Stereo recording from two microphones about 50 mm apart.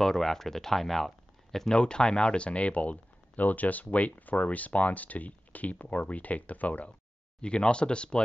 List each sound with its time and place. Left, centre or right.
0.0 s speech: centre; by 6.9 s left
7.4 s speech: left